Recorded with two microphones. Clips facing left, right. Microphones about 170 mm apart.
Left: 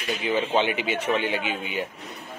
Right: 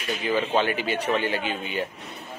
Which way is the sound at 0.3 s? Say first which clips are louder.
Even; 20° left (ahead or behind).